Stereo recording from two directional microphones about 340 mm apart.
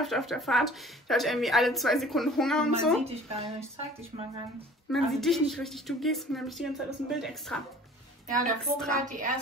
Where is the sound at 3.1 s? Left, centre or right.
Centre.